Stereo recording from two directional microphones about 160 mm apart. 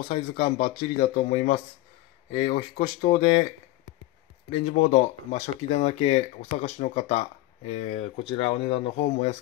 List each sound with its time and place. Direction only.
0.1 s speech: 35° left (ahead or behind)
1.1 s speech: 45° left (ahead or behind)
4.5 s speech: 40° left (ahead or behind)